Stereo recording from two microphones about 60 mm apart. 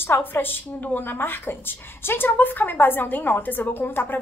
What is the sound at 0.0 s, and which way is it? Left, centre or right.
A woman's voice, left.